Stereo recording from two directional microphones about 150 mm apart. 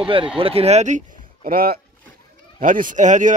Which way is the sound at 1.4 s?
85° right.